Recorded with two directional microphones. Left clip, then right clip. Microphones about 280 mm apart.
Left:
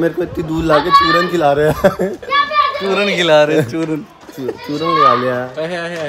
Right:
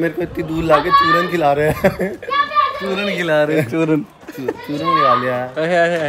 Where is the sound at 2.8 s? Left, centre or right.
Left.